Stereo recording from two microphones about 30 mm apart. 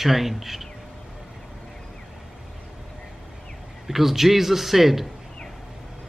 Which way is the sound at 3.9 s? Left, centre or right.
Centre.